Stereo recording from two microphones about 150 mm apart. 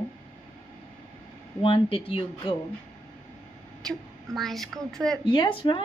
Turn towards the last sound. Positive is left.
turn(degrees=35)  # may be behind; listen again after turning